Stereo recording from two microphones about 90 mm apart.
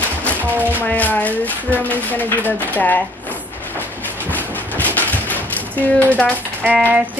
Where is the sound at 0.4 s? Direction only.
20° right (ahead or behind).